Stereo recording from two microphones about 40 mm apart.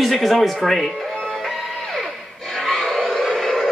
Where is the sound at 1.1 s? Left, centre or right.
Centre.